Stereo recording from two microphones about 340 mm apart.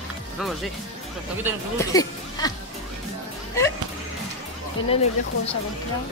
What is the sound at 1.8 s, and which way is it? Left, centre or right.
Speech, centre.